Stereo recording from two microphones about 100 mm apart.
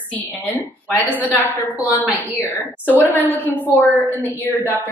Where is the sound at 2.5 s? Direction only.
15° left (ahead or behind).